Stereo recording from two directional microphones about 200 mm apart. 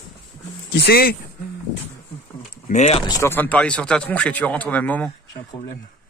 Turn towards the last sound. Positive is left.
turn(degrees=5)  # may be behind; listen again after turning